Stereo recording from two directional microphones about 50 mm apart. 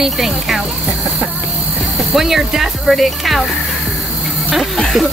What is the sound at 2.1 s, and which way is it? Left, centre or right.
Speech, centre.